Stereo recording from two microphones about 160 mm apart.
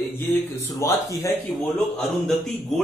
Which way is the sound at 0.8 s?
20° left (ahead or behind).